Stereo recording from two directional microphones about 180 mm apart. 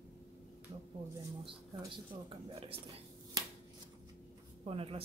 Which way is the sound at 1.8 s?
30° right (ahead or behind).